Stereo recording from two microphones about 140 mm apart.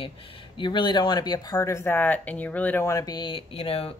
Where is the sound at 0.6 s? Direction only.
35° left (ahead or behind).